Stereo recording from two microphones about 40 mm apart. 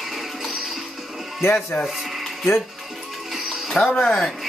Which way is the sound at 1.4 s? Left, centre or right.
Left.